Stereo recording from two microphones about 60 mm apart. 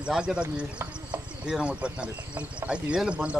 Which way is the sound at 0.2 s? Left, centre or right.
Centre.